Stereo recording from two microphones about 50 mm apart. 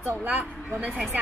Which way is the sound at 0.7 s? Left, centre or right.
Right.